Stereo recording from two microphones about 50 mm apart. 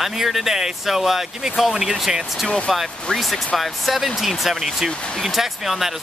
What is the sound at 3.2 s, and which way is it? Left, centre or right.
Speech, centre.